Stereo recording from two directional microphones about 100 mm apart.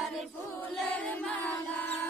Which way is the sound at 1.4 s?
15° left (ahead or behind).